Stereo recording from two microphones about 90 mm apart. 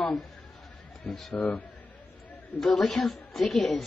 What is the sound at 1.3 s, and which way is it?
Speech, 15° left (ahead or behind).